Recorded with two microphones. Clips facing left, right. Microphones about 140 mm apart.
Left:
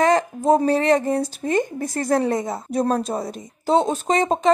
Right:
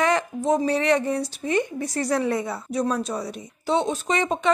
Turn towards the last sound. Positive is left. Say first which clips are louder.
# left 4 dB
turn(degrees=40)  # may be behind; listen again after turning